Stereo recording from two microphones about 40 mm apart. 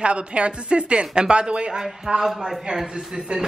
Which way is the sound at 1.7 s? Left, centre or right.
Centre.